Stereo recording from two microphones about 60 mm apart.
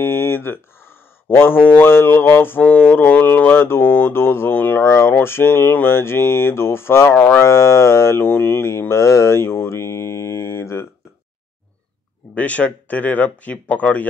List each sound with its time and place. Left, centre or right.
0.0 s speech: left
4.8 s speech: left
5.2 s speech: left
7.2 s speech: left
7.4 s speech: left
8.6 s mantra: left
12.4 s speech: left